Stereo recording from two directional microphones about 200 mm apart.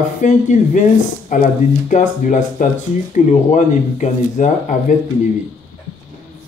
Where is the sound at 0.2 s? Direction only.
40° left (ahead or behind).